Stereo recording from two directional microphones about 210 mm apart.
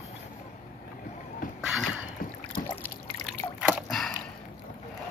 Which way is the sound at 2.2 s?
45° left (ahead or behind).